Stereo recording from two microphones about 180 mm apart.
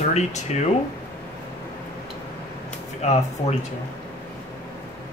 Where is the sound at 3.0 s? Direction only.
40° left (ahead or behind).